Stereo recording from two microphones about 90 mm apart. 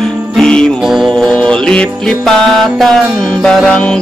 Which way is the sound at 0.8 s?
Centre (ahead or behind).